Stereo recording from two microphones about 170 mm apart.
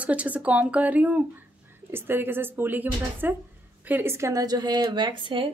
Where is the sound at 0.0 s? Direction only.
10° right (ahead or behind).